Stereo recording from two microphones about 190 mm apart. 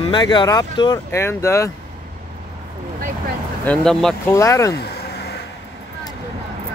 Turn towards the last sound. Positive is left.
turn(degrees=55)  # may be behind; listen again after turning